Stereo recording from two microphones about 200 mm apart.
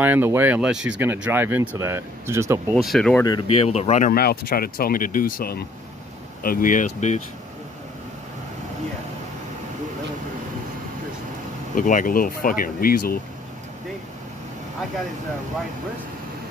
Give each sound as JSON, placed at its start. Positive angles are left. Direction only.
{"t": 0.0, "sound": "speech", "side_deg": -10}
{"t": 2.7, "sound": "speech", "side_deg": 0}
{"t": 3.6, "sound": "speech", "side_deg": 30}
{"t": 4.1, "sound": "speech", "side_deg": 50}
{"t": 11.7, "sound": "speech", "side_deg": 40}